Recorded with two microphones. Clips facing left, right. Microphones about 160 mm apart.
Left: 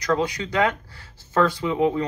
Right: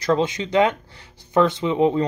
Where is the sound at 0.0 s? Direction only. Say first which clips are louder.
Right 3 dB; 25° right (ahead or behind).